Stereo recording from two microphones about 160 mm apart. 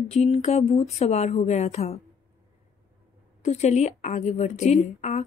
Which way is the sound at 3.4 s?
45° left (ahead or behind).